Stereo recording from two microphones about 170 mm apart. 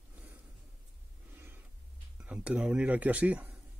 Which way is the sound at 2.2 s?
5° right (ahead or behind).